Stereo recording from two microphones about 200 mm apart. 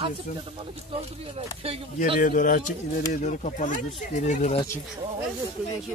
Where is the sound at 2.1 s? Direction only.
40° left (ahead or behind).